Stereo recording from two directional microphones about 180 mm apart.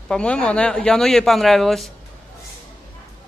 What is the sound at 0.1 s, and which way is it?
Speech, 5° left (ahead or behind).